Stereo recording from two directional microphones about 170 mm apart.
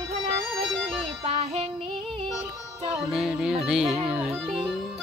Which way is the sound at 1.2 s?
40° right (ahead or behind).